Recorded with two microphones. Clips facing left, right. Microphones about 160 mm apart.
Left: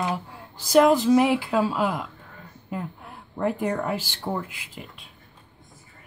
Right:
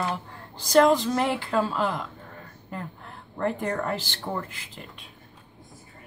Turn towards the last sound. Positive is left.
turn(degrees=10)  # may be behind; listen again after turning